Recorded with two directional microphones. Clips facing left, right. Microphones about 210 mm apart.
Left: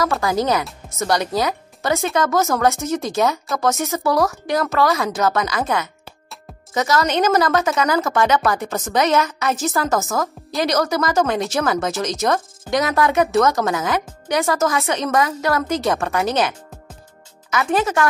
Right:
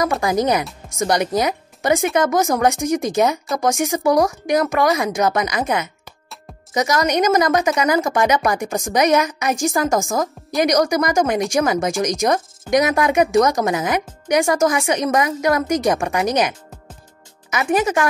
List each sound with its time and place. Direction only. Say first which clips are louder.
0.0 s speech: right 1 dB; 20° right (ahead or behind)